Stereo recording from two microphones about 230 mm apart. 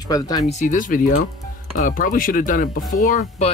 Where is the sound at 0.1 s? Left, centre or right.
Centre.